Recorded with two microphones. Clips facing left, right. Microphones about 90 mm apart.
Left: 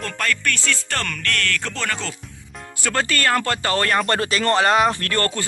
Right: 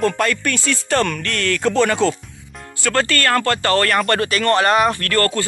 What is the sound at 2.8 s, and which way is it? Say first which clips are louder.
Speech: right 3 dB; 10° left (ahead or behind).